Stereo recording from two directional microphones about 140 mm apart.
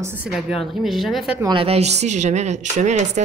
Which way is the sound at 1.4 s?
30° right (ahead or behind).